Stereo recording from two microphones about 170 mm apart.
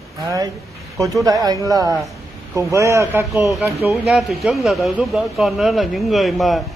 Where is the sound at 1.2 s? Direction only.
20° right (ahead or behind).